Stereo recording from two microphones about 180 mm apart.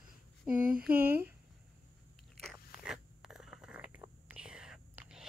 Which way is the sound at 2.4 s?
5° right (ahead or behind).